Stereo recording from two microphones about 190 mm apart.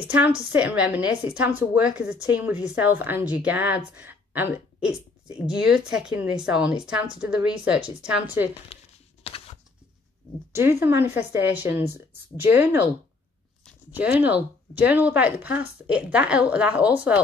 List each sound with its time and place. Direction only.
0.5 s a woman's voice: 5° right (ahead or behind)
8.7 s a sound: 30° left (ahead or behind)
10.5 s a woman's voice: 15° right (ahead or behind)
13.9 s a woman's voice: 10° right (ahead or behind)